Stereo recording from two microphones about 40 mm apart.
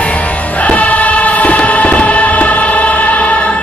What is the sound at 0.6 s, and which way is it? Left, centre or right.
Music, left.